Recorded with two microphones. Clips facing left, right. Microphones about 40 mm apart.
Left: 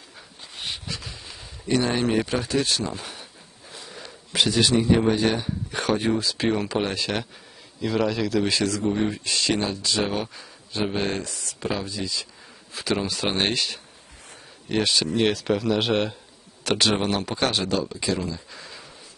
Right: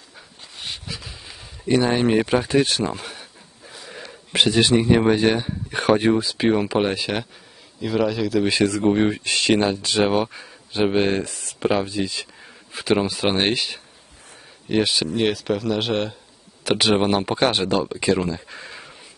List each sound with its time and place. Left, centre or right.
0.8 s speech: centre; by 3.0 s right
3.0 s a sound: centre
3.9 s speech: right
6.1 s speech: centre
8.5 s speech: right
8.8 s speech: right
11.6 s speech: right; by 16.2 s centre
16.6 s speech: centre; by 18.9 s right